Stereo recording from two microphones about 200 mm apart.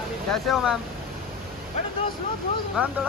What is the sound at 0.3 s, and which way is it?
Speech, centre (ahead or behind).